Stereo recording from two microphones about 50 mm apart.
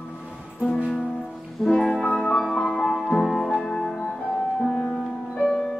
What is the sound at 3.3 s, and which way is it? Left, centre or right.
Music, centre.